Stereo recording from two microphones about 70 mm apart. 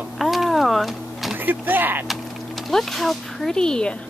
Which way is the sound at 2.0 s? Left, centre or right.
Centre.